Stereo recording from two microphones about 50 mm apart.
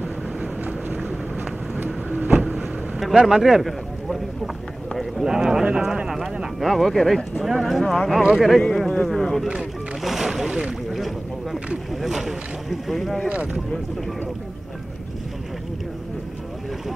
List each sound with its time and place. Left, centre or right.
3.0 s speech: centre
10.9 s boat: centre
11.9 s speech: centre
13.3 s speech: right